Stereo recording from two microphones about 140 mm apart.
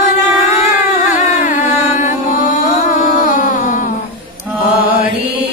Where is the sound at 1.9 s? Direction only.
60° left (ahead or behind).